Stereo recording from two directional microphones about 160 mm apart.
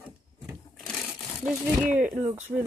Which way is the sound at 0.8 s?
Centre (ahead or behind).